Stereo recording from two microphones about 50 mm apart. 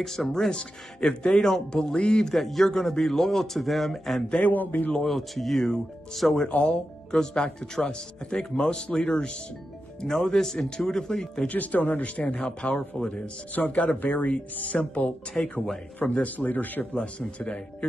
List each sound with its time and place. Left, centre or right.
0.0 s a man's voice: centre
0.5 s speech: centre
2.0 s a man's voice: left
2.2 s a man's voice: centre
4.4 s speech: left
5.0 s a man's voice: centre
6.5 s speech: centre
11.4 s speech: left
11.9 s a man's voice: left
13.6 s a man's voice: left
15.3 s a man's voice: centre; by 16.8 s left